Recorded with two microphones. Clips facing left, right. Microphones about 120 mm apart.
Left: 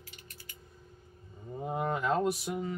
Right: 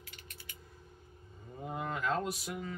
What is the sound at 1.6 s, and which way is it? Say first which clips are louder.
Speech: left 4 dB; 25° left (ahead or behind).